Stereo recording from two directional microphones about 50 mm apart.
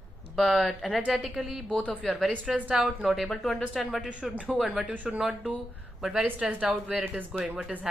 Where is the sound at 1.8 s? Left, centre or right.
Left.